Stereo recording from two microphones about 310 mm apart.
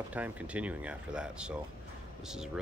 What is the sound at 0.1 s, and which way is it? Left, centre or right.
Speech, centre.